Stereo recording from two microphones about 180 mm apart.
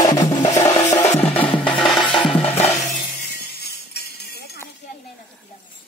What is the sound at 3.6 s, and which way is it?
Music, 65° left (ahead or behind).